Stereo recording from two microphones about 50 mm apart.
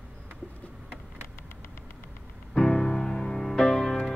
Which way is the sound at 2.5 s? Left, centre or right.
Centre.